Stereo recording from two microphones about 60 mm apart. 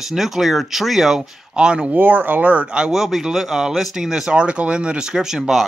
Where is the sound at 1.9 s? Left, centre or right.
Right.